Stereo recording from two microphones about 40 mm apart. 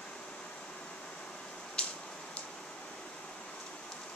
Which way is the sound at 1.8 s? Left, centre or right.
Left.